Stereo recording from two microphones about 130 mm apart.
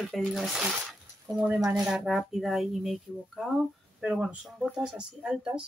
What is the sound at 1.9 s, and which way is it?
Speech, 5° right (ahead or behind).